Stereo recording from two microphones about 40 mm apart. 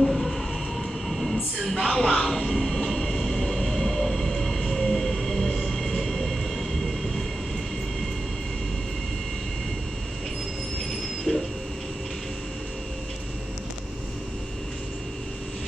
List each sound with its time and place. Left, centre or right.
0.0 s a sound: centre
1.0 s train: centre
10.9 s train: centre